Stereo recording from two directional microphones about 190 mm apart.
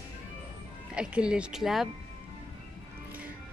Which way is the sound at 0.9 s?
5° right (ahead or behind).